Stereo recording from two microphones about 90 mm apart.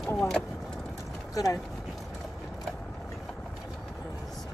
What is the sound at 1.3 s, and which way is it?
Speech, 40° left (ahead or behind).